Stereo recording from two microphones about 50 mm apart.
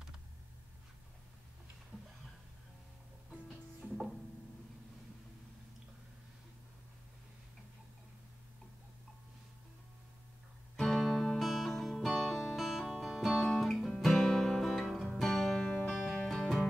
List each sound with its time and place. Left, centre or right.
3.4 s music: centre
10.8 s music: centre
15.9 s music: centre